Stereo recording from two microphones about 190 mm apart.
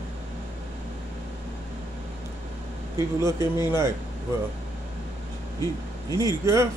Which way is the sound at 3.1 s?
15° right (ahead or behind).